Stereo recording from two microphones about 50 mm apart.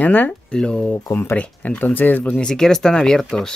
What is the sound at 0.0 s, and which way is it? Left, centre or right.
Speech, left.